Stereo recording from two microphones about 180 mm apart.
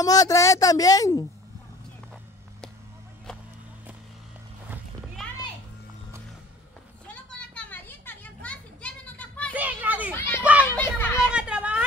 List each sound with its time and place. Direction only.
0.0 s speech: 20° left (ahead or behind)
5.2 s music: centre (ahead or behind)
7.1 s children playing: 5° left (ahead or behind)
9.6 s a sound: 10° right (ahead or behind)
10.1 s children playing: 10° left (ahead or behind)
10.4 s children playing: 10° right (ahead or behind)
10.8 s a child's voice: 10° left (ahead or behind)
11.1 s children playing: 5° right (ahead or behind)